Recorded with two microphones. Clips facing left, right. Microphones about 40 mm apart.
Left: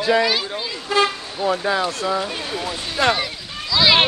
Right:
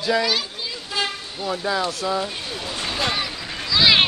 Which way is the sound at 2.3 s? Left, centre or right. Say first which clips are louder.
Left 4 dB; left.